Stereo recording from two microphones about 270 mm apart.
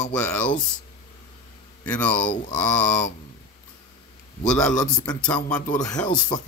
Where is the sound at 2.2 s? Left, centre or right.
Left.